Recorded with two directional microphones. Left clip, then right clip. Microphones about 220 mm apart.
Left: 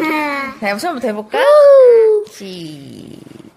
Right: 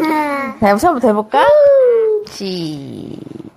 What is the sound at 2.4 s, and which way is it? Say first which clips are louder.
Speech: right 7 dB; 5° right (ahead or behind).